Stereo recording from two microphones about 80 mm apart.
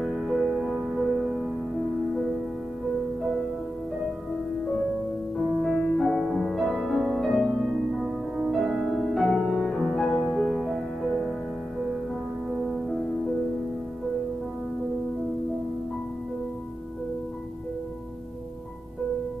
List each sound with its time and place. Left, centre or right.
0.0 s music: centre
5.6 s music: centre
12.4 s music: centre